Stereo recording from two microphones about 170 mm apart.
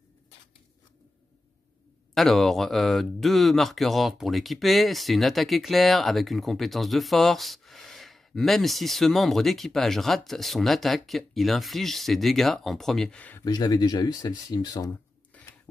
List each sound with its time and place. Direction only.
2.1 s speech: centre (ahead or behind)
13.4 s speech: 20° left (ahead or behind)